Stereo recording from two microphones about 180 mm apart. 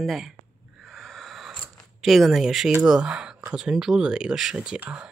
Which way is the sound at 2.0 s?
Centre (ahead or behind).